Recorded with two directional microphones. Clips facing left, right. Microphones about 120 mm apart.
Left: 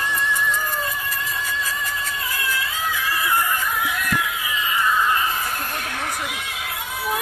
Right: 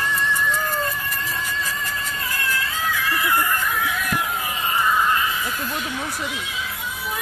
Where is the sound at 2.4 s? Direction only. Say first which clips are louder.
Right 1 dB; 15° left (ahead or behind).